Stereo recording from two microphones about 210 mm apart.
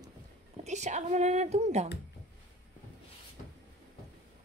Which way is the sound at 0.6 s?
35° right (ahead or behind).